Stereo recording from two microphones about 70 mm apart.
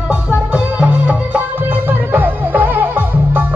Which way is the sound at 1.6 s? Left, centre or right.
Right.